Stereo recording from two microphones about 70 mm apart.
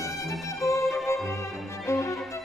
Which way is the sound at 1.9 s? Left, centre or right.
Left.